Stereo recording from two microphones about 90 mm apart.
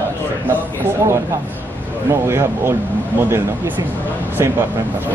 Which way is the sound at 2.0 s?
30° right (ahead or behind).